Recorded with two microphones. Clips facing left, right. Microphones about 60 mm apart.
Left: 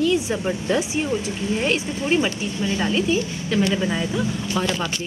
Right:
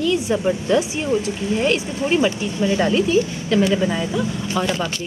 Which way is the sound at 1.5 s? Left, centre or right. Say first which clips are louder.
Right 3 dB; centre.